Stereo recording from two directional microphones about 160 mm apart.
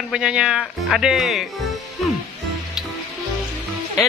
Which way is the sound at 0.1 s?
5° right (ahead or behind).